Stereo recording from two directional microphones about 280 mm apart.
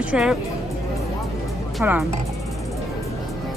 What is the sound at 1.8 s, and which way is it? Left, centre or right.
Speech, centre.